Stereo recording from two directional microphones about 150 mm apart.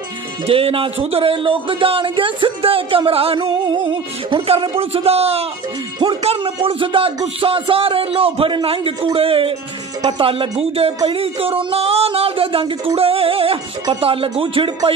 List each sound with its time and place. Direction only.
0.5 s speech: 40° right (ahead or behind)